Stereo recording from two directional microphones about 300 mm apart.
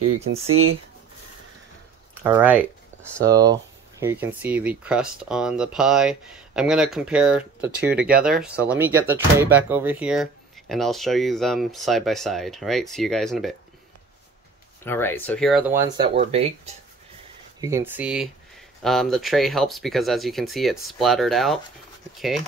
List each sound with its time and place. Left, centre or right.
0.2 s speech: right
2.1 s speech: centre
14.8 s speech: centre
16.2 s speech: centre
17.6 s speech: centre